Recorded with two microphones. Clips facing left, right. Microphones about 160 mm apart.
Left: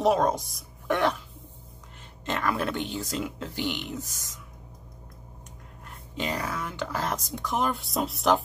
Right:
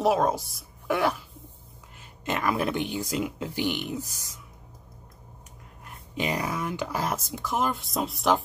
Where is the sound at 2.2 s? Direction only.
10° right (ahead or behind).